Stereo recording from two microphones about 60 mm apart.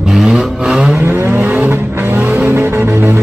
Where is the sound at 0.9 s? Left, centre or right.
Right.